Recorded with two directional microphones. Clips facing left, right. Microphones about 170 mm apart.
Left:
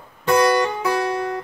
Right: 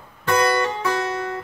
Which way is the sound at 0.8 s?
15° left (ahead or behind).